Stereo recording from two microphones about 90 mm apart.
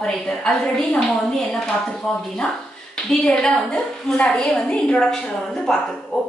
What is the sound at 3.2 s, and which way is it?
A woman's voice, 10° left (ahead or behind).